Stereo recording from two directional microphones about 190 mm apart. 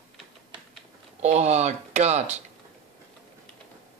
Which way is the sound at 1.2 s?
35° right (ahead or behind).